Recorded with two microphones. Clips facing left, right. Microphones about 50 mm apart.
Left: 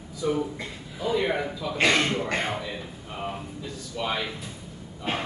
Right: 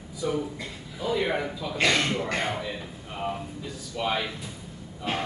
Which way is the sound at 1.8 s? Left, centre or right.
Left.